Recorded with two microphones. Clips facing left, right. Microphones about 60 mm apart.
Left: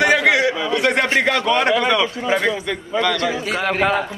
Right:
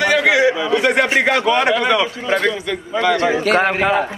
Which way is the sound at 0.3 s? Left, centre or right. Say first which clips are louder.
Right 3 dB; right.